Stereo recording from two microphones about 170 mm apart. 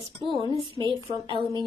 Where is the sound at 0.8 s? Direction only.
30° right (ahead or behind).